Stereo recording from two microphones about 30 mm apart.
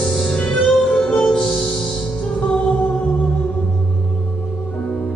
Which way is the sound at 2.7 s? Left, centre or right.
Left.